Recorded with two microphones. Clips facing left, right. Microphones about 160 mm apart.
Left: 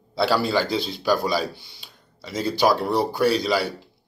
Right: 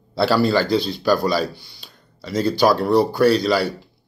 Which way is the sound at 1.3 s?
20° left (ahead or behind).